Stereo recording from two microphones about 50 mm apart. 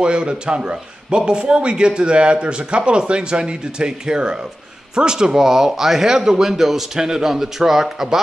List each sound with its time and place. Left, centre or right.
0.0 s a man's voice: centre